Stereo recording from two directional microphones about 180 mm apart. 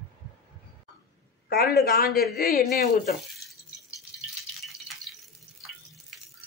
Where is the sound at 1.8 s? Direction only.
55° left (ahead or behind).